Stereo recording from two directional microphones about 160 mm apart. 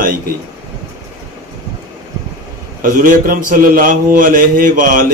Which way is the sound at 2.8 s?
60° right (ahead or behind).